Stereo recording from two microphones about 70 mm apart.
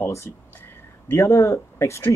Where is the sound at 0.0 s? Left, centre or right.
Left.